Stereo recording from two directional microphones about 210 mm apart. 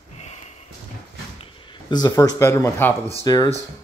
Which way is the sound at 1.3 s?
20° left (ahead or behind).